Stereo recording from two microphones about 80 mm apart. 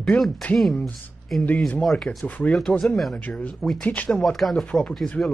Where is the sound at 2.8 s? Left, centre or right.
Centre.